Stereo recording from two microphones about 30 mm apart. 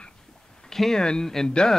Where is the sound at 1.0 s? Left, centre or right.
Left.